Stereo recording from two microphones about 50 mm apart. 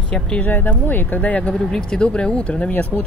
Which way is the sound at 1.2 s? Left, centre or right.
Left.